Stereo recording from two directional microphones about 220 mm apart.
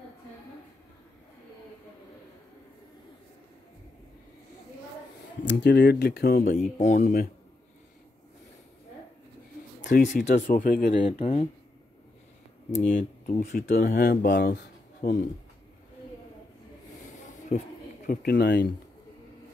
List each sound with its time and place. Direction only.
5.4 s speech: 50° left (ahead or behind)
6.8 s speech: 35° left (ahead or behind)
10.0 s speech: 35° left (ahead or behind)
11.0 s speech: 25° left (ahead or behind)
12.9 s speech: 40° left (ahead or behind)
17.5 s speech: 30° left (ahead or behind)
18.0 s speech: 45° left (ahead or behind)